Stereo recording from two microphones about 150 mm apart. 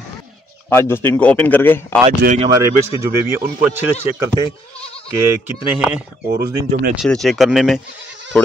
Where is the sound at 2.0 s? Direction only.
50° right (ahead or behind).